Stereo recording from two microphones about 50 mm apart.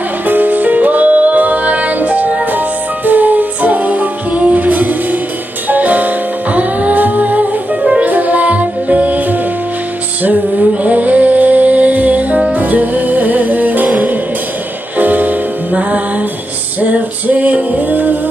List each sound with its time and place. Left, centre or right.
0.3 s music: right
7.8 s music: right
10.2 s a sound: right
12.5 s music: right